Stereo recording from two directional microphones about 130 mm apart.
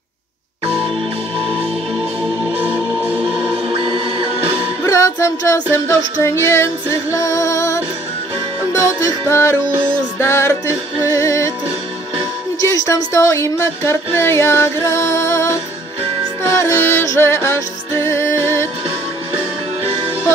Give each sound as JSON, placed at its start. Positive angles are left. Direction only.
{"t": 2.4, "sound": "music", "side_deg": -10}
{"t": 3.7, "sound": "music", "side_deg": -40}
{"t": 4.8, "sound": "female singing", "side_deg": 25}
{"t": 11.0, "sound": "music", "side_deg": 25}
{"t": 12.6, "sound": "female singing", "side_deg": 25}
{"t": 16.4, "sound": "music", "side_deg": 20}